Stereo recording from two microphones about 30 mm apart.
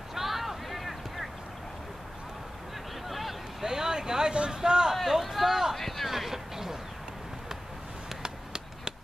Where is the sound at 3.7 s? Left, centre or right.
Centre.